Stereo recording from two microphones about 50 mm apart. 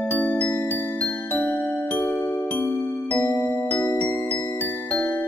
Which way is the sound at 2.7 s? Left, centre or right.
Left.